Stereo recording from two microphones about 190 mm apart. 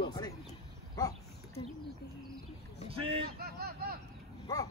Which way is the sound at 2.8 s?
30° right (ahead or behind).